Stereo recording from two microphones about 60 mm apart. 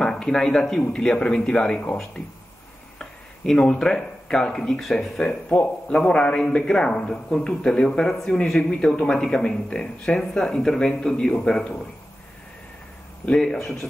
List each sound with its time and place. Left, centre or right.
0.0 s a man's voice: centre
3.0 s speech: centre
5.5 s a man's voice: left
13.2 s speech: centre